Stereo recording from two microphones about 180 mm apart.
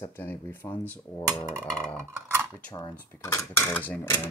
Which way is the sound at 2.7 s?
20° left (ahead or behind).